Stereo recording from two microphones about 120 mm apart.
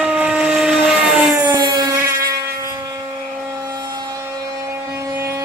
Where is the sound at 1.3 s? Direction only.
35° right (ahead or behind).